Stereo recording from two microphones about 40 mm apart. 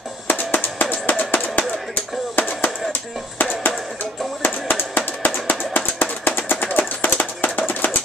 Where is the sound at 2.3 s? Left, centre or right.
Left.